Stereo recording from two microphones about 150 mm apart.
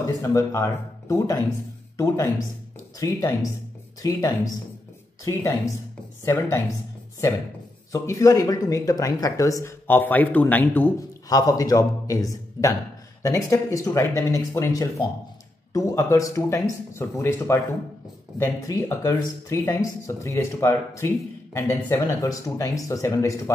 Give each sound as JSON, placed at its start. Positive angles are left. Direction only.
{"t": 0.0, "sound": "speech", "side_deg": 20}
{"t": 5.3, "sound": "speech", "side_deg": 25}
{"t": 7.9, "sound": "speech", "side_deg": 20}
{"t": 11.2, "sound": "speech", "side_deg": 25}